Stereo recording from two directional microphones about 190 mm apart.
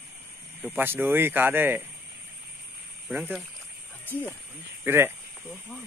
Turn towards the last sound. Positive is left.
turn(degrees=-10)  # may be behind; listen again after turning